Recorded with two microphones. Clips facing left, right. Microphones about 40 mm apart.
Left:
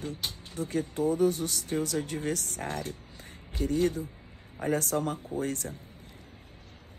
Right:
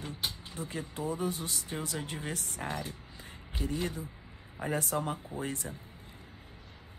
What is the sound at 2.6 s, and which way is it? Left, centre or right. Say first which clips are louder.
Speech: left 2 dB; right.